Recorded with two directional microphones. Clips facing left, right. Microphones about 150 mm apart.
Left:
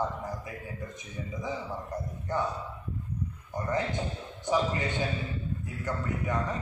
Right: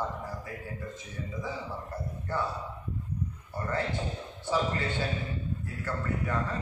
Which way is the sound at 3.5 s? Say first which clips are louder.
Left 2 dB; 15° left (ahead or behind).